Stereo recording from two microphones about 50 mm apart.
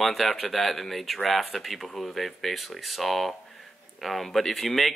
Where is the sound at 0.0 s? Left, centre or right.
Centre.